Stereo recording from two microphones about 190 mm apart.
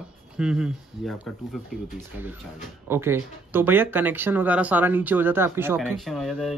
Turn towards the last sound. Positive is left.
turn(degrees=0)  # may be behind; listen again after turning